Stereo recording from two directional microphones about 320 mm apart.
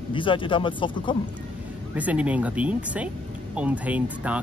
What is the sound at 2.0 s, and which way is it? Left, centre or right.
Speech, centre.